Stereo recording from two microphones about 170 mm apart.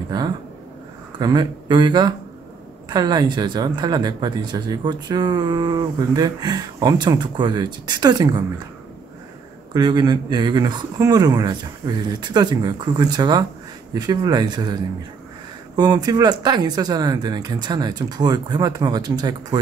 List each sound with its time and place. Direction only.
1.2 s speech: 25° right (ahead or behind)
9.8 s speech: 25° right (ahead or behind)